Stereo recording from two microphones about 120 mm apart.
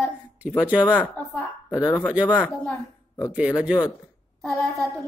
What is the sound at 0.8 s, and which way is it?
Speech, 15° left (ahead or behind).